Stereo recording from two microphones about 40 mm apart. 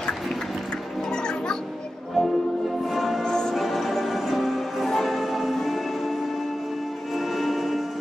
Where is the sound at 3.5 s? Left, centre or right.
Centre.